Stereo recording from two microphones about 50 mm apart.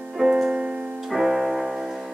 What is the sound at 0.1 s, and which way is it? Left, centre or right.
Piano, centre.